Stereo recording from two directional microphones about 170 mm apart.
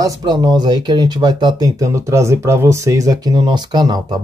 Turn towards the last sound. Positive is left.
turn(degrees=-25)  # may be behind; listen again after turning